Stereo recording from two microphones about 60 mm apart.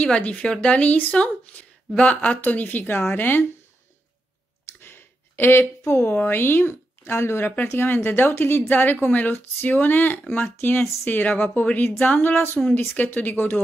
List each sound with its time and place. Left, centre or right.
0.0 s a woman's voice: left
4.8 s a sound: left
6.2 s a woman's voice: left
7.2 s speech: left
7.6 s a woman's voice: left